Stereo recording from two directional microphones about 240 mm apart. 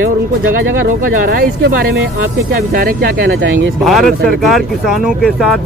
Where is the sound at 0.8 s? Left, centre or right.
Right.